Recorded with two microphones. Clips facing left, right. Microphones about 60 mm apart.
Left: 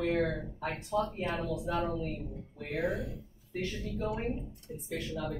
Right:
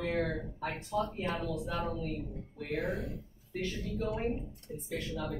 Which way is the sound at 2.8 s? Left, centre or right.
Right.